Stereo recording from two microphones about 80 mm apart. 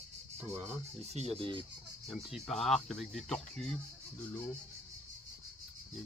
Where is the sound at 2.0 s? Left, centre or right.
Centre.